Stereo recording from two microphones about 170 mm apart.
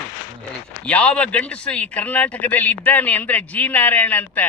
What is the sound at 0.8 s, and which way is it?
A man's voice, 5° left (ahead or behind).